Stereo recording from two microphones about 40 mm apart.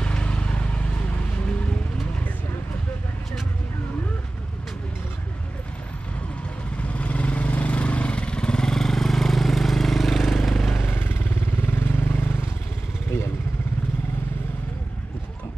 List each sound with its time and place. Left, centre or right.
0.0 s vehicle: left
6.8 s vehicle: left; by 10.5 s centre
10.5 s vehicle: centre
10.8 s vehicle: left